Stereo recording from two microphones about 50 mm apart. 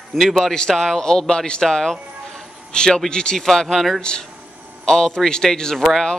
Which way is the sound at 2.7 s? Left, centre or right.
Centre.